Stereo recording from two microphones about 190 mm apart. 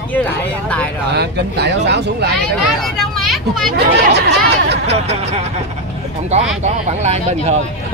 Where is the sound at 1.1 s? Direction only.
60° right (ahead or behind).